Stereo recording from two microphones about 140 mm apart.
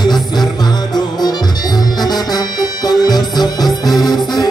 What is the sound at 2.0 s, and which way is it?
Music, 30° left (ahead or behind).